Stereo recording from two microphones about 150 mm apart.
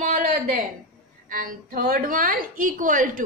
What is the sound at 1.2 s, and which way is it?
A woman's voice, 65° right (ahead or behind).